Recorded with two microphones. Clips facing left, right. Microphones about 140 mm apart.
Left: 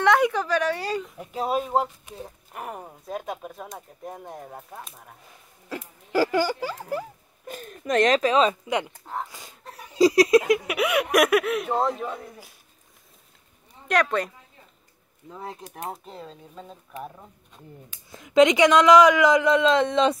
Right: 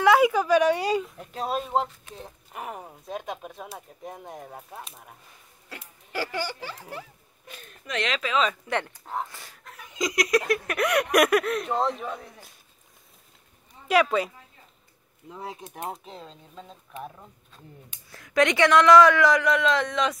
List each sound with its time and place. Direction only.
0.0 s speech: 5° right (ahead or behind)
1.0 s speech: 5° left (ahead or behind)
5.7 s speech: 40° left (ahead or behind)
8.6 s speech: 15° left (ahead or behind)
9.7 s laughter: 35° left (ahead or behind)
10.4 s speech: 15° left (ahead or behind)
13.8 s speech: 5° right (ahead or behind); by 20.2 s 25° left (ahead or behind)